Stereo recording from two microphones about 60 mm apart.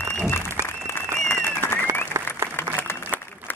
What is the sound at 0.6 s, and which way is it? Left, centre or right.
Applause, left.